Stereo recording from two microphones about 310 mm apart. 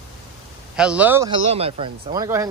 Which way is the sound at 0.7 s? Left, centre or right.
Centre.